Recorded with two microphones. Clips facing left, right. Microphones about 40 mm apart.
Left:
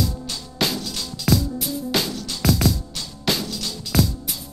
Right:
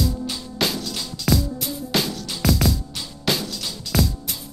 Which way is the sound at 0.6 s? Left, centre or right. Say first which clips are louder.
Left 1 dB; centre.